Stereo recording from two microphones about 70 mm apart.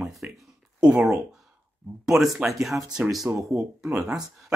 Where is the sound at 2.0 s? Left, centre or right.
Centre.